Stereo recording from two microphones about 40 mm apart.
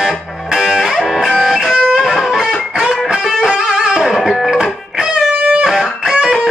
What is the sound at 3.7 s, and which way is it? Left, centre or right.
Music, centre.